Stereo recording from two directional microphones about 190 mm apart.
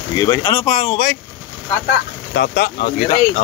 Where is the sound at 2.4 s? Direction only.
50° left (ahead or behind).